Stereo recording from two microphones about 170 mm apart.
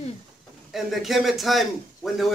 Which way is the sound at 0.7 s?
Centre (ahead or behind).